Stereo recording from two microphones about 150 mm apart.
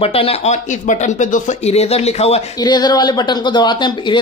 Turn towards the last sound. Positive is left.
turn(degrees=30)  # may be behind; listen again after turning